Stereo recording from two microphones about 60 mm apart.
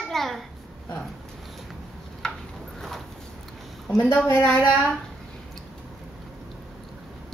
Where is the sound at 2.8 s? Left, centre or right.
Centre.